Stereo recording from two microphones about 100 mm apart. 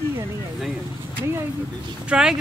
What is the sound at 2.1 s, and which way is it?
Speech, 5° right (ahead or behind).